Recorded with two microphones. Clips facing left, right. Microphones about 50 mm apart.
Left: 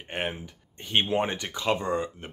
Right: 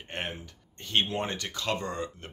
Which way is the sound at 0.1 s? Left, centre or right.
Centre.